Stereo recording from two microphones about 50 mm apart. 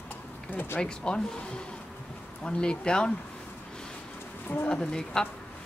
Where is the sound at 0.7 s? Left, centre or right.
Centre.